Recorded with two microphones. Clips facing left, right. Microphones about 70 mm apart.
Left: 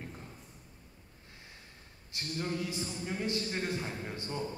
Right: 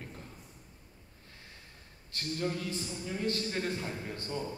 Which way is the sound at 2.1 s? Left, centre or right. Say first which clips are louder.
Right 1 dB; centre.